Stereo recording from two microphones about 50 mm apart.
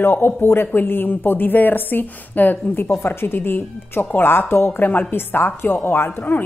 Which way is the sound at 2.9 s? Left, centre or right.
Left.